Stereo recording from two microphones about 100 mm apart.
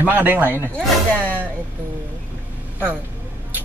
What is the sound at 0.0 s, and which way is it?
Speech, 15° right (ahead or behind).